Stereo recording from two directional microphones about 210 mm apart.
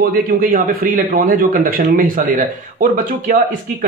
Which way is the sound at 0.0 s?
45° right (ahead or behind).